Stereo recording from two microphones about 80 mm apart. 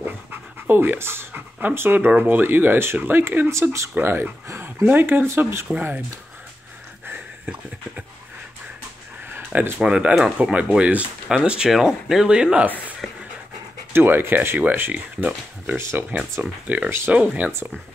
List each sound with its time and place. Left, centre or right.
0.0 s dog: right
2.0 s speech: right
3.9 s speech: right
4.8 s speech: right
5.7 s speech: right
9.3 s a sound: right
9.8 s speech: centre
13.9 s speech: right
16.6 s speech: right